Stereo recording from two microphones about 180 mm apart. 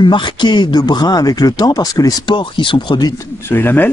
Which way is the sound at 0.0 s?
25° left (ahead or behind).